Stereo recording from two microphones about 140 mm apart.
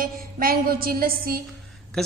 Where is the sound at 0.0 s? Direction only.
90° right.